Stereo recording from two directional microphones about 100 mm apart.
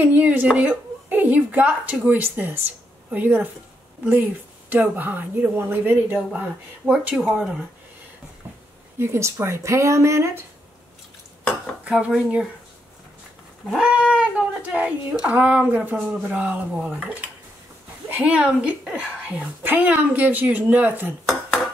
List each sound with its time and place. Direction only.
0.0 s a woman's voice: 15° right (ahead or behind)
6.9 s a woman's voice: 10° right (ahead or behind)
8.9 s a woman's voice: 25° right (ahead or behind)
11.8 s dishes: 10° right (ahead or behind)
13.7 s a woman's voice: 10° right (ahead or behind)